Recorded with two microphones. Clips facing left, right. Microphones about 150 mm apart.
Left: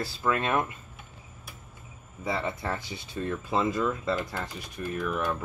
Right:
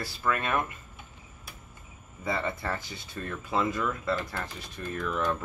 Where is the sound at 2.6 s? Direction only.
20° left (ahead or behind).